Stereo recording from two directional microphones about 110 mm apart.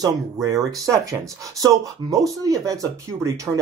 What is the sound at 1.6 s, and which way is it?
Speech, 30° right (ahead or behind).